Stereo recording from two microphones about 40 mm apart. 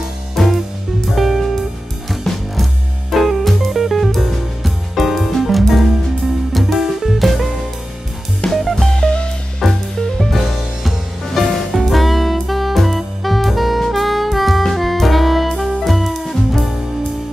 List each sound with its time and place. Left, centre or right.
1.1 s music: centre
8.9 s music: left
9.6 s music: centre
10.3 s music: centre